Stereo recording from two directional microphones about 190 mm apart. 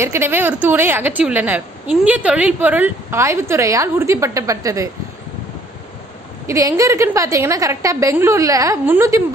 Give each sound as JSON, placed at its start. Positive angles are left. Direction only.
{"t": 0.0, "sound": "a woman's voice", "side_deg": -15}
{"t": 6.4, "sound": "a woman's voice", "side_deg": -15}